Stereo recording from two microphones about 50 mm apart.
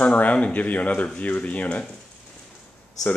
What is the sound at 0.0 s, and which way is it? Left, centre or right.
Speech, left.